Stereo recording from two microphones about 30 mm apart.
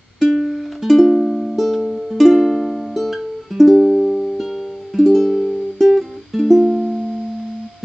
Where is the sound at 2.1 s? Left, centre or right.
Centre.